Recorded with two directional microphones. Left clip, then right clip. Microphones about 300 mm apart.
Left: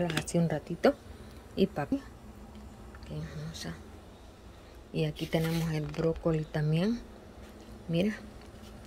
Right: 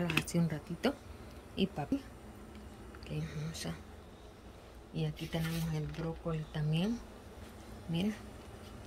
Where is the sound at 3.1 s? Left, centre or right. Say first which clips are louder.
Left 1 dB; centre.